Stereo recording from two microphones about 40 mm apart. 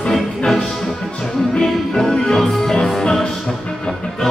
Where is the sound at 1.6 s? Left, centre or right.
Centre.